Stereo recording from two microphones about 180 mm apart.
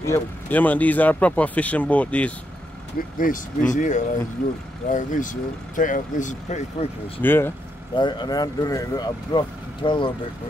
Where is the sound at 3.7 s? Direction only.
45° left (ahead or behind).